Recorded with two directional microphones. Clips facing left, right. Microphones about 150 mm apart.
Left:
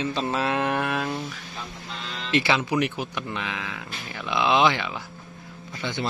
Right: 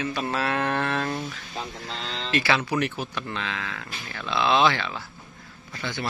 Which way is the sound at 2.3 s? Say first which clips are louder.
Left 2 dB; 20° left (ahead or behind).